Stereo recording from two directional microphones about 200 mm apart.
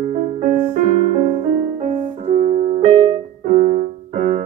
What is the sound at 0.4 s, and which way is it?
Keyboard, 35° right (ahead or behind).